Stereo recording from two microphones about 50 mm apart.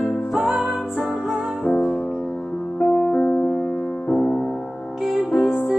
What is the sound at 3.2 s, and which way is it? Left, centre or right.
Music, left.